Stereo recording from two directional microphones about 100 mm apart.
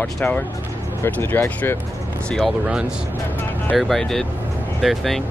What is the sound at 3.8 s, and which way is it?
Speech, 5° left (ahead or behind).